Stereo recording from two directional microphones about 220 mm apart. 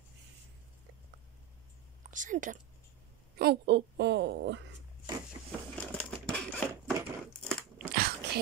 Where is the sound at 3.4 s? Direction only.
45° right (ahead or behind).